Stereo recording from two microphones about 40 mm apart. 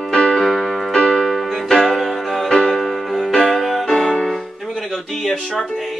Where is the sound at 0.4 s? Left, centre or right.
Centre.